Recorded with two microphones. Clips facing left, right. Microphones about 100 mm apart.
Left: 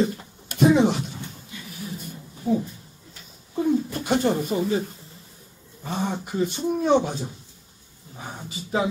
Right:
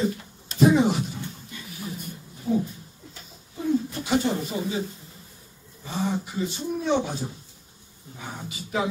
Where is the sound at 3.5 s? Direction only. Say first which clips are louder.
Left 3 dB; 55° left (ahead or behind).